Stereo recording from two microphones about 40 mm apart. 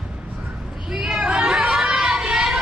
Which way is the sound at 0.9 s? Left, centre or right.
Centre.